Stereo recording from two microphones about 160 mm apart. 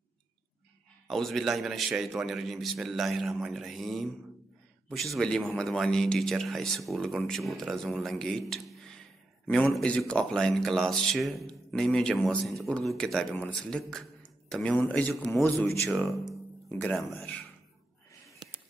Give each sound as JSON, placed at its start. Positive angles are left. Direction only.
{"t": 1.0, "sound": "speech", "side_deg": 0}
{"t": 18.4, "sound": "music", "side_deg": -25}